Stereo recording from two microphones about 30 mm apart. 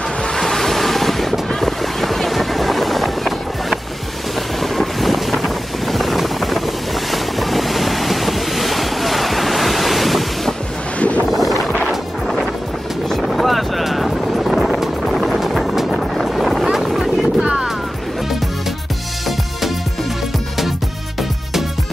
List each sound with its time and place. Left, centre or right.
0.4 s ocean: centre
1.6 s boat: centre
4.7 s vehicle: centre
7.1 s waves: centre
11.0 s wind noise: left
11.2 s a sound: centre
13.3 s vehicle: centre
15.0 s music: centre
15.9 s vehicle: centre
16.7 s boat: centre
17.0 s vehicle: centre